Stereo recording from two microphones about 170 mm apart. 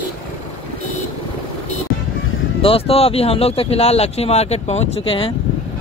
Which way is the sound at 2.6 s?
35° left (ahead or behind).